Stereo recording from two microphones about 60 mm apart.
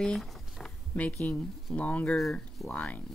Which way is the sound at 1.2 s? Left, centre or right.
Left.